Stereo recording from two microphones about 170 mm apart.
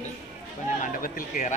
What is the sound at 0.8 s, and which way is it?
Speech, 55° left (ahead or behind).